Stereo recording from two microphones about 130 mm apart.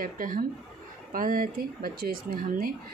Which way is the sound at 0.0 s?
90° right.